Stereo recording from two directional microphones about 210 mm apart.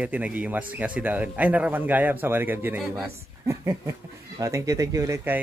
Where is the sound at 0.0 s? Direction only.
5° right (ahead or behind).